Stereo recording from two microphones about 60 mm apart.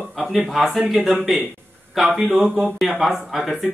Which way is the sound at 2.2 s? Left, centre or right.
Right.